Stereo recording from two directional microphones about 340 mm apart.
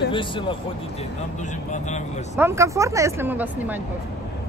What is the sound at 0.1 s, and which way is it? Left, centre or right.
Speech, centre.